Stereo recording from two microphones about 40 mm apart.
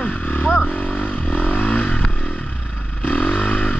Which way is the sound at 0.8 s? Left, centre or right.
Left.